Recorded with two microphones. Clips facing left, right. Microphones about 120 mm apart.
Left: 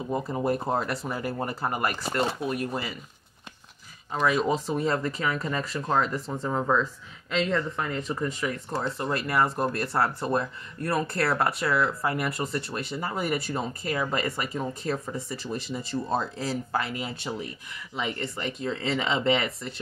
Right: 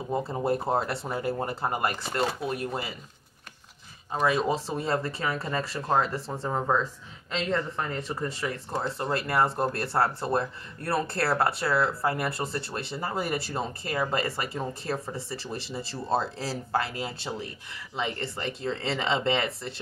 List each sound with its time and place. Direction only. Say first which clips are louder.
0.1 s speech: even; 25° right (ahead or behind)
4.1 s speech: left 1 dB; 25° right (ahead or behind)